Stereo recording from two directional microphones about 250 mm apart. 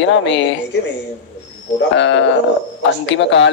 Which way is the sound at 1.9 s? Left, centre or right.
Left.